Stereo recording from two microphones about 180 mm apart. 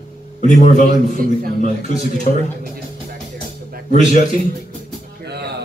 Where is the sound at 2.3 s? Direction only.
40° left (ahead or behind).